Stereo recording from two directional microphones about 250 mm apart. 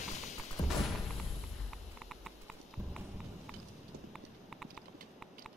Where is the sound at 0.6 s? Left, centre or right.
Centre.